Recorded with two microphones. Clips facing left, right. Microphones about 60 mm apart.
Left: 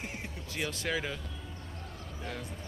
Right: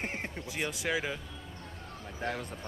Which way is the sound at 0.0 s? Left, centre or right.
Right.